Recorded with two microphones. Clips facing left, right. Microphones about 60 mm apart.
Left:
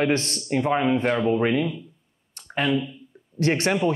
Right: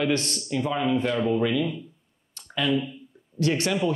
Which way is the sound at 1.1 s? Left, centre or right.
Centre.